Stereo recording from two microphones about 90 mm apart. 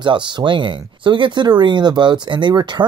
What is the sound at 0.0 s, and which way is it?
Speech, 60° right (ahead or behind).